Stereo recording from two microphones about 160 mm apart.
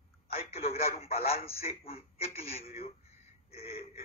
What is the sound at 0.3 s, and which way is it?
A man's voice, 40° left (ahead or behind).